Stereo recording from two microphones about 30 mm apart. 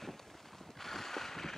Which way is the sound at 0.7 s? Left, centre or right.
Centre.